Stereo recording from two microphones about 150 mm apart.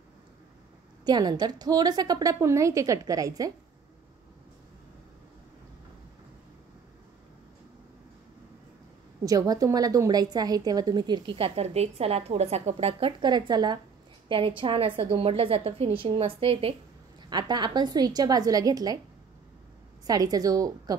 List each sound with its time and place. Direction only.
1.0 s a woman's voice: 25° right (ahead or behind)
9.2 s a woman's voice: 25° right (ahead or behind); by 16.7 s 40° right (ahead or behind)
17.3 s a woman's voice: 30° right (ahead or behind)
20.1 s a woman's voice: 25° right (ahead or behind)